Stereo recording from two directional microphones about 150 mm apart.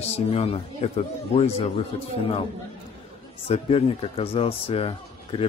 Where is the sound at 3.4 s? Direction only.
40° left (ahead or behind).